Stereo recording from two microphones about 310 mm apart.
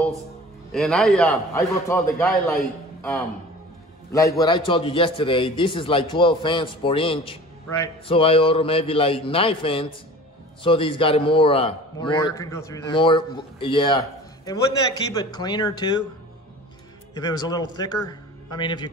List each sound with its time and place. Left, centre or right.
0.7 s a man's voice: centre
4.1 s a man's voice: centre
17.1 s a man's voice: centre